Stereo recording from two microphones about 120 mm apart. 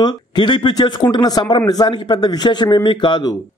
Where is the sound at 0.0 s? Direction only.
35° left (ahead or behind).